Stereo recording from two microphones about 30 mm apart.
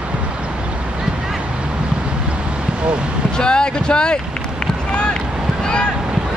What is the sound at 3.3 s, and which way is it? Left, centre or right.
Speech, left.